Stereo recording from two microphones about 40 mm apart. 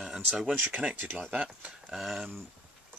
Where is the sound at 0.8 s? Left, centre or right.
Right.